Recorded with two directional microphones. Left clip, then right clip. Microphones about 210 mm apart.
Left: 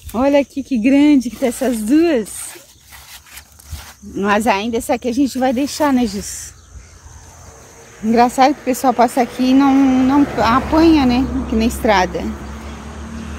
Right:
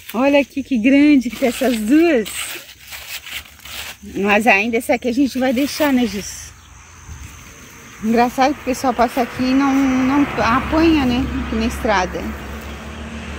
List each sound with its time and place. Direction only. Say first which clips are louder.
0.1 s speech: left 1 dB; centre (ahead or behind)
4.2 s speech: right 2 dB; centre (ahead or behind)
8.1 s speech: left 3 dB; 10° left (ahead or behind)